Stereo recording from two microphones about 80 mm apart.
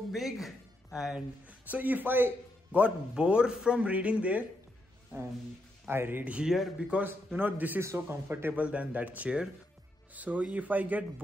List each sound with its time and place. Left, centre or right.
0.1 s speech: centre
1.7 s a man's voice: right
5.9 s speech: right
6.4 s speech: centre
6.9 s a man's voice: right